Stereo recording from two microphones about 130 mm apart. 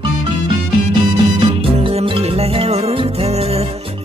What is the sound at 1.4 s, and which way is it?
Music, 45° right (ahead or behind).